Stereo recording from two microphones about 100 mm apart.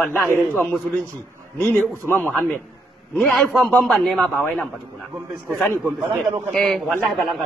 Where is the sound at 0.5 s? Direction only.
5° left (ahead or behind).